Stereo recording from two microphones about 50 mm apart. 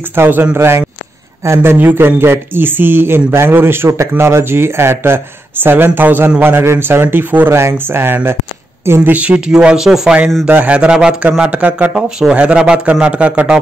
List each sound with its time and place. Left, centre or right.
0.1 s speech: right
1.4 s speech: right
1.7 s speech: right
6.4 s speech: right
7.4 s speech: right
7.7 s speech: right
9.1 s a man's voice: right
9.8 s speech: centre
10.4 s a man's voice: right
10.9 s a man's voice: centre